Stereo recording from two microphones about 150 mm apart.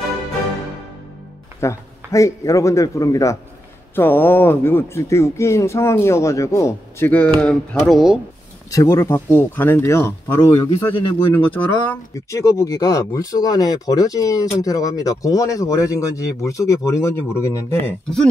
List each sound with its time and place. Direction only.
1.6 s speech: 20° left (ahead or behind); by 8.2 s centre (ahead or behind)
8.6 s speech: 20° left (ahead or behind)
11.3 s speech: 15° left (ahead or behind)